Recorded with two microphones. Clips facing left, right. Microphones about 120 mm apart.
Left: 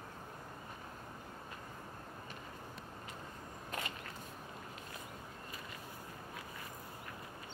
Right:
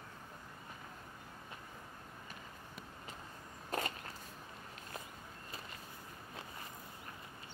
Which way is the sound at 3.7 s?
35° right (ahead or behind).